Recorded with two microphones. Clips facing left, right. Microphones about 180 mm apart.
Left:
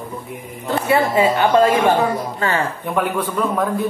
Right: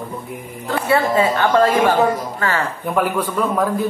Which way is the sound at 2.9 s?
5° right (ahead or behind).